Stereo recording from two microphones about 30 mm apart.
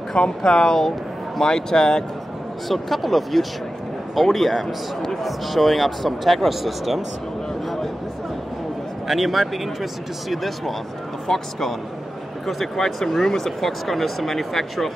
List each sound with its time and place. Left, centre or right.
0.1 s speech: left
2.7 s speech: centre
9.0 s speech: centre
11.2 s speech: centre